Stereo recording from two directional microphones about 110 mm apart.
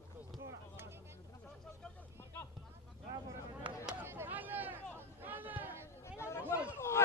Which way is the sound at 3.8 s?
20° right (ahead or behind).